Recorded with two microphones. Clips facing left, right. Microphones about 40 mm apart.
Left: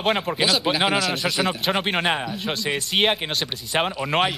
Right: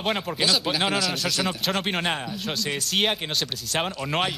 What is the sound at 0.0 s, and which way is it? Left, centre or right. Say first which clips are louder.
Speech: left 4 dB; centre.